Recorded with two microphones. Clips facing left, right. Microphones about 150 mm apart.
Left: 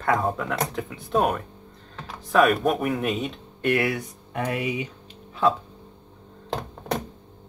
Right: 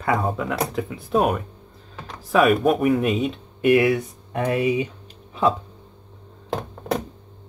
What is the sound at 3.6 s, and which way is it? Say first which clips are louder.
Speech: right 6 dB; 20° right (ahead or behind).